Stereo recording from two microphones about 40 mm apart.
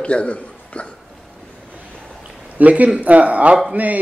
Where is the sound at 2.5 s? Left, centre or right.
Right.